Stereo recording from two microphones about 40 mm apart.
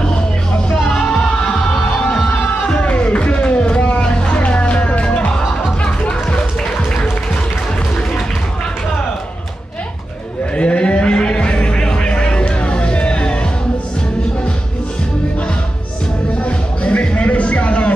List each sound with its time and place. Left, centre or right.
2.6 s music: left
10.5 s music: left
16.4 s music: left